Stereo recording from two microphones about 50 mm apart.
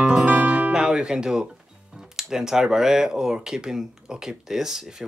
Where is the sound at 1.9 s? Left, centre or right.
Centre.